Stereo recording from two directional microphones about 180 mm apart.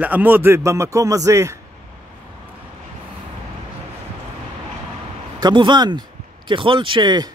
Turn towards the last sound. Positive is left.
turn(degrees=-25)  # may be behind; listen again after turning